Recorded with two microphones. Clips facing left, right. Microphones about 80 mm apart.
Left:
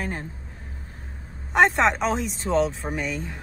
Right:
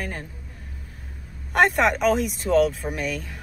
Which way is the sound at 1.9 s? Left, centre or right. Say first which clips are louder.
Right 4 dB; left.